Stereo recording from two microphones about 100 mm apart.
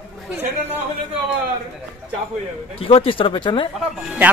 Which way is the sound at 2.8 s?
70° left (ahead or behind).